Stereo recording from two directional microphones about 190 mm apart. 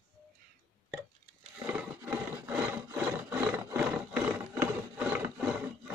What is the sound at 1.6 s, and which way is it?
Wood, 10° right (ahead or behind).